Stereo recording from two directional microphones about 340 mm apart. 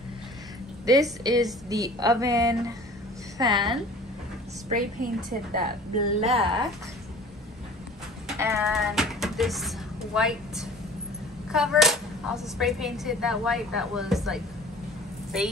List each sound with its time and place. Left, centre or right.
0.9 s a woman's voice: centre
4.6 s a woman's voice: right
8.3 s speech: centre